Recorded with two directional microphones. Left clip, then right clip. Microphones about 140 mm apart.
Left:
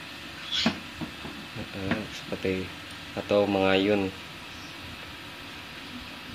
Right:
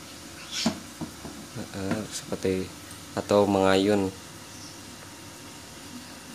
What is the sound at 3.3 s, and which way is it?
Speech, 30° right (ahead or behind).